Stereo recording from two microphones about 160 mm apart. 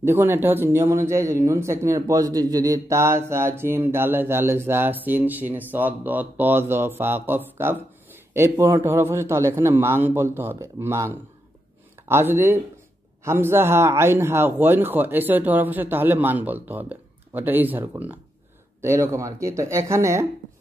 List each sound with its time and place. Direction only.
0.0 s speech: 15° right (ahead or behind)